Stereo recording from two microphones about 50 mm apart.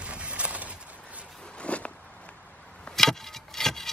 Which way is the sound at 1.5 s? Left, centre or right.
Left.